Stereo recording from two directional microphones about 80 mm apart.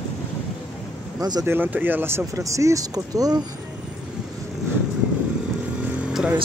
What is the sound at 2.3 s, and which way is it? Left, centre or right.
Speech, right.